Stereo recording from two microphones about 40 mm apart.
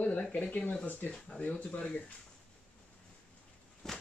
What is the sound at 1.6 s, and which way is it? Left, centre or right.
Speech, left.